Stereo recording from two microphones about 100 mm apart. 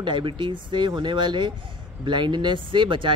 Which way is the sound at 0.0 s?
55° right (ahead or behind).